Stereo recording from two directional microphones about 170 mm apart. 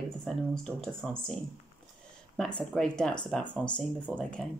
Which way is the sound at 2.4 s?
5° left (ahead or behind).